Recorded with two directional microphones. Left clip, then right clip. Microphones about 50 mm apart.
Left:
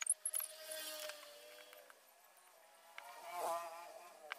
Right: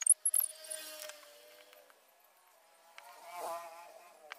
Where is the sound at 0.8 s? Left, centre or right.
Centre.